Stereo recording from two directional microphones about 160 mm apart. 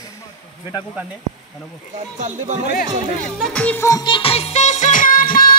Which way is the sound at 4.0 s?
35° left (ahead or behind).